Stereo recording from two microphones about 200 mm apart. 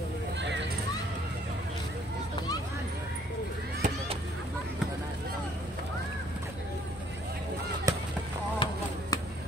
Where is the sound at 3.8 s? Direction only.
40° right (ahead or behind).